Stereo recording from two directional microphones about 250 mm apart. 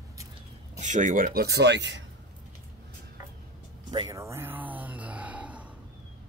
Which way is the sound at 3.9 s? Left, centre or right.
Centre.